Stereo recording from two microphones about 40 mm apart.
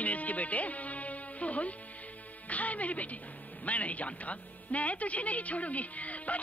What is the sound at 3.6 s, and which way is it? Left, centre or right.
Music, left.